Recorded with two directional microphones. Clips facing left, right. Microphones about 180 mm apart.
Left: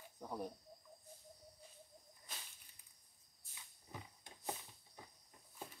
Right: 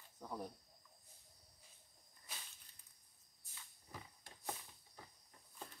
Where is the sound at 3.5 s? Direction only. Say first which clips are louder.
Left 2 dB; 20° left (ahead or behind).